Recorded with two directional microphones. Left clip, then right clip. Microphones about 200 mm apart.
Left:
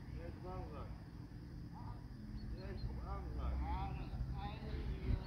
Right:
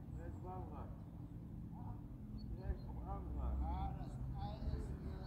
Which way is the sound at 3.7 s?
65° right (ahead or behind).